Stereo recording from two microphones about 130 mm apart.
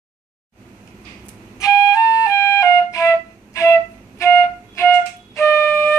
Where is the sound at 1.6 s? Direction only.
25° left (ahead or behind).